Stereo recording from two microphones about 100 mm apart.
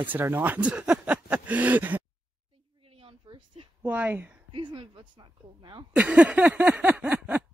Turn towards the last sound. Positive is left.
turn(degrees=-15)  # may be behind; listen again after turning